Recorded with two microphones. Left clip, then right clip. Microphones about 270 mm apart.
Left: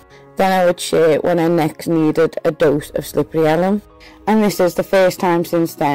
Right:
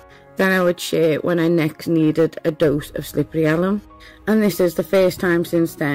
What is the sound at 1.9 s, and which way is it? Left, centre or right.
Speech, left.